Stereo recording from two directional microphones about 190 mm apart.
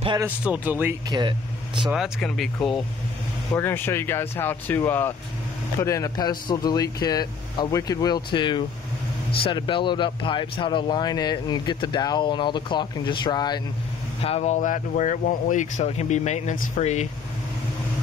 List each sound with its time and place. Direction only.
0.2 s speech: 10° right (ahead or behind)
3.5 s speech: 10° left (ahead or behind)
14.2 s speech: 35° left (ahead or behind)